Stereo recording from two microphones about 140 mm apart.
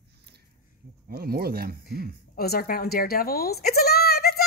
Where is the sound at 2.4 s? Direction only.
90° left.